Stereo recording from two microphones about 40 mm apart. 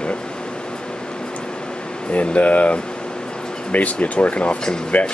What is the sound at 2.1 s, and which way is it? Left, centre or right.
Speech, left.